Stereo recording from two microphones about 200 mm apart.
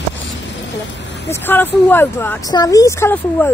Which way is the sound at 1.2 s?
10° left (ahead or behind).